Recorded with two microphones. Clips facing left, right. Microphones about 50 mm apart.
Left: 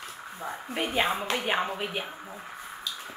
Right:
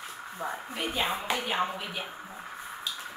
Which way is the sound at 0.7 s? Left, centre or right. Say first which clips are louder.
Left 5 dB; left.